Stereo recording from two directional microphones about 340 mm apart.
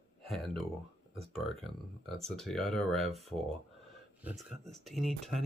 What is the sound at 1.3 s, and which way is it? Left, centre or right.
Speech, centre.